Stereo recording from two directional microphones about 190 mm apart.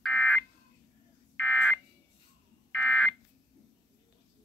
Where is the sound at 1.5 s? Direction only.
5° right (ahead or behind).